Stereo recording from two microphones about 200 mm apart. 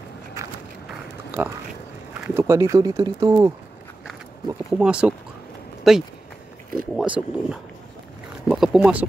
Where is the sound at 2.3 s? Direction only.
15° right (ahead or behind).